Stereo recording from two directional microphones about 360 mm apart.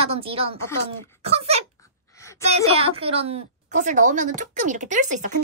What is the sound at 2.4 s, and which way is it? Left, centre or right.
A woman's voice, centre.